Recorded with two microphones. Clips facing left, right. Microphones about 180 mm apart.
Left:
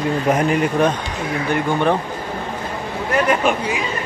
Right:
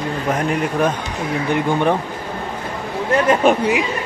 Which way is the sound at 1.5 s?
15° right (ahead or behind).